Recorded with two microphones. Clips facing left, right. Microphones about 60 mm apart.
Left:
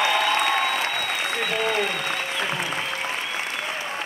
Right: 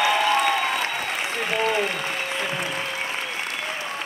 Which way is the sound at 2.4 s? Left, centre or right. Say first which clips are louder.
Left 1 dB; centre.